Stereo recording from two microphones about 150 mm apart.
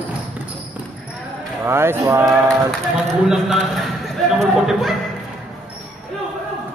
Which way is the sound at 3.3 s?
Centre (ahead or behind).